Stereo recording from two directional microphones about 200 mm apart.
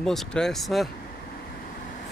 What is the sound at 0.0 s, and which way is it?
Speech, 5° left (ahead or behind).